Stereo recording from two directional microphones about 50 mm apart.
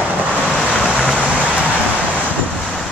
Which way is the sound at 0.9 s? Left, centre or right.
Centre.